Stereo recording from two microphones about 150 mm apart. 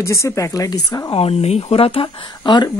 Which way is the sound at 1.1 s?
40° left (ahead or behind).